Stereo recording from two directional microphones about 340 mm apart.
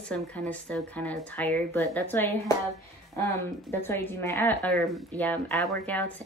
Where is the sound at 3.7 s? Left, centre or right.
Centre.